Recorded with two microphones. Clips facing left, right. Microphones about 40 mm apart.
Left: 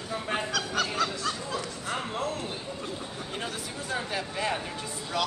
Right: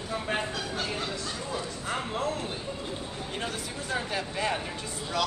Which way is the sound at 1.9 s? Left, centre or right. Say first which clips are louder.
Right 1 dB; centre.